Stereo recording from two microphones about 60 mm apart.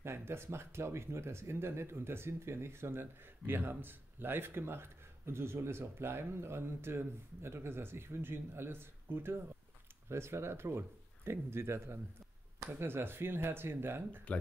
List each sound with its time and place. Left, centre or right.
0.0 s speech: right